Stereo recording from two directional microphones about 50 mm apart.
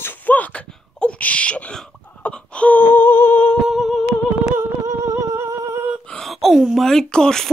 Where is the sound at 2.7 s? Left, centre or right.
Left.